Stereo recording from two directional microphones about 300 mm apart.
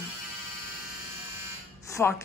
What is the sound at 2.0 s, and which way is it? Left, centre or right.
Speech, centre.